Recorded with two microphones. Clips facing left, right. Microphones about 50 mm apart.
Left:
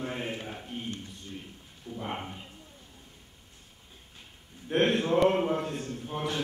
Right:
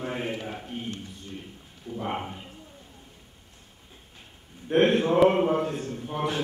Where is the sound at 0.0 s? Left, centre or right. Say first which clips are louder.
Right 3 dB; centre.